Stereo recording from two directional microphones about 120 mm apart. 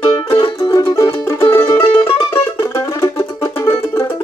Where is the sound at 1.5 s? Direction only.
20° left (ahead or behind).